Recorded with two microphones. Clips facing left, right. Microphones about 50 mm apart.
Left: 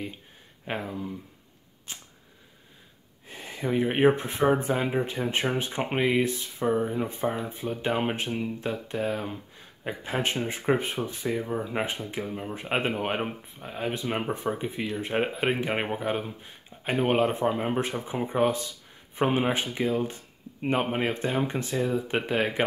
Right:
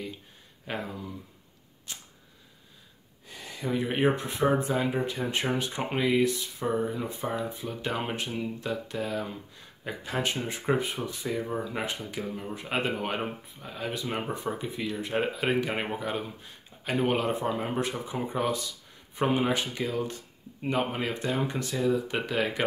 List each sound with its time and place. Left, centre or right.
0.7 s speech: left
1.9 s camera: left
3.3 s speech: left
6.6 s speech: centre
6.9 s speech: left